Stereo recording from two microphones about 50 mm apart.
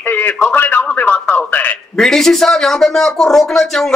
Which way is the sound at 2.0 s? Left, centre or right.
Centre.